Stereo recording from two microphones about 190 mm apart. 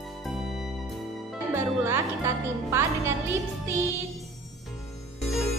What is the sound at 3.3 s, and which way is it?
Music, 15° right (ahead or behind).